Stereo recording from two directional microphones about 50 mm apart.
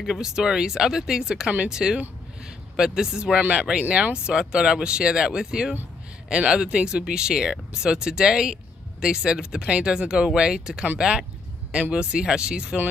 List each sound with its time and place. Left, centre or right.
0.0 s speech: centre
3.3 s speech: right
4.1 s speech: centre